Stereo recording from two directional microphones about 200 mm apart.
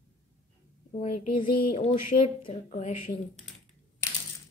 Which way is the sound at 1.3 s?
25° left (ahead or behind).